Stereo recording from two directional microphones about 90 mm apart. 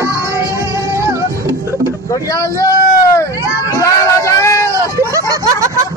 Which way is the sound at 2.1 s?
40° left (ahead or behind).